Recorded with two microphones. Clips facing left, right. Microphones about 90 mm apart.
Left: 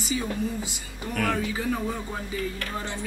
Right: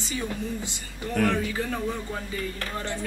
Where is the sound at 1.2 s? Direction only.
10° left (ahead or behind).